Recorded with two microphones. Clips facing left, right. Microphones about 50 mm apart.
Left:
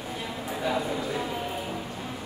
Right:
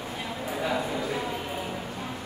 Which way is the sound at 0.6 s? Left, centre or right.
Centre.